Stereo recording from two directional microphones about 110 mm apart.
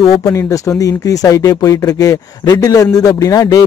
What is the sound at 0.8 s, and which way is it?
Speech, 30° left (ahead or behind).